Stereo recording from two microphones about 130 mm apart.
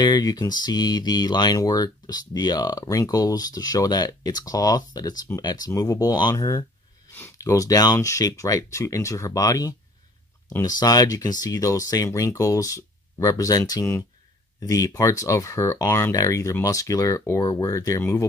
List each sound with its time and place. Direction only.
0.0 s speech: 30° left (ahead or behind)